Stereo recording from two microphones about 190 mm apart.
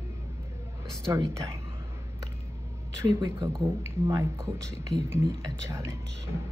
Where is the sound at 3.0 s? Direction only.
20° right (ahead or behind).